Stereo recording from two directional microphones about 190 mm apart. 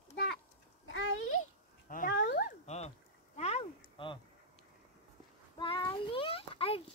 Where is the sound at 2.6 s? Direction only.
35° left (ahead or behind).